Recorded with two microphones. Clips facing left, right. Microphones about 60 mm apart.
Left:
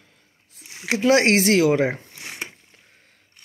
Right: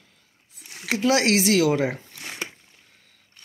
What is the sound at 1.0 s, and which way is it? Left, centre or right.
Speech, left.